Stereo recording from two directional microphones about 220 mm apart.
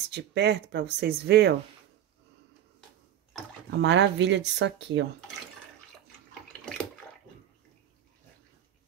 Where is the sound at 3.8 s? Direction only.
55° right (ahead or behind).